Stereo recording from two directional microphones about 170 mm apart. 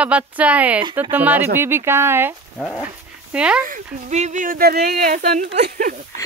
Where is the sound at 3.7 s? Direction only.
45° right (ahead or behind); by 5.0 s 65° right (ahead or behind).